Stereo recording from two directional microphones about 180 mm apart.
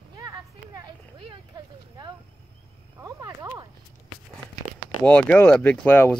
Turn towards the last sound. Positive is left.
turn(degrees=10)  # may be behind; listen again after turning